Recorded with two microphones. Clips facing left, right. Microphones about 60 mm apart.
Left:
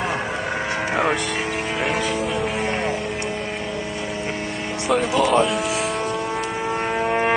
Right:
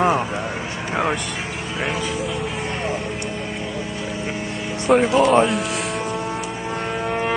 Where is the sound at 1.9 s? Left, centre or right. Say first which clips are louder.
Left 1 dB; left.